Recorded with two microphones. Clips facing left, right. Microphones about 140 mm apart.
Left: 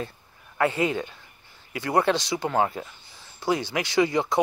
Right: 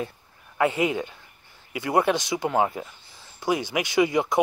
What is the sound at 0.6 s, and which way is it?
Speech, 15° right (ahead or behind).